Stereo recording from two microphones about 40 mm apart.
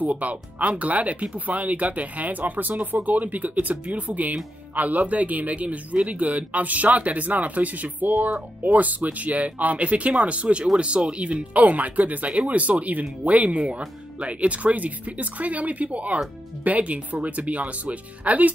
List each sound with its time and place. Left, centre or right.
0.0 s speech: right